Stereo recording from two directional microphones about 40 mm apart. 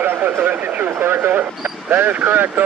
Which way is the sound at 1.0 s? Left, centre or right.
Right.